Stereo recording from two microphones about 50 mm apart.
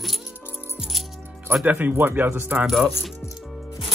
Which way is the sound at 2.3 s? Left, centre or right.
Right.